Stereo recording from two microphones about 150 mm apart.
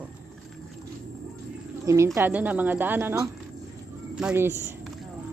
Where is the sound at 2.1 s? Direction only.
10° right (ahead or behind).